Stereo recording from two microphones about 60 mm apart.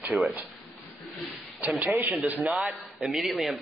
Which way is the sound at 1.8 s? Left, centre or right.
Right.